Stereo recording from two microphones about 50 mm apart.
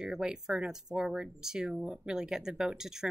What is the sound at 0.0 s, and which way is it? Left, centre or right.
A woman's voice, centre.